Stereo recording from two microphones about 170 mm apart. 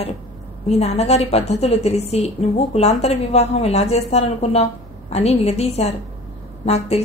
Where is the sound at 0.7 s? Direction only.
40° left (ahead or behind).